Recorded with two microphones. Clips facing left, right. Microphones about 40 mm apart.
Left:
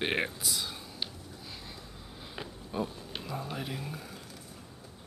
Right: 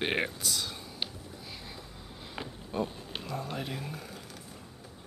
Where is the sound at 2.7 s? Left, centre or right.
Centre.